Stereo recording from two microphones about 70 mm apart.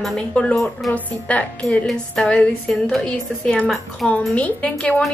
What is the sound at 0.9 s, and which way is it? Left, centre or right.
Speech, left.